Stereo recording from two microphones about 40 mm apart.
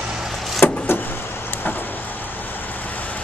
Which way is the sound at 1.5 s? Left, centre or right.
Left.